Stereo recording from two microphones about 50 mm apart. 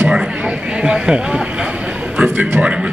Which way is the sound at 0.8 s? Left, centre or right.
Centre.